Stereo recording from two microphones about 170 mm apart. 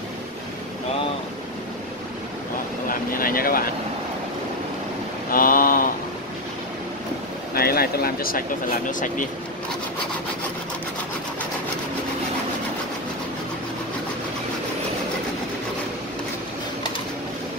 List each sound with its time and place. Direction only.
2.9 s speech: 55° left (ahead or behind)
5.3 s mantra: 55° left (ahead or behind)
7.5 s speech: 65° left (ahead or behind)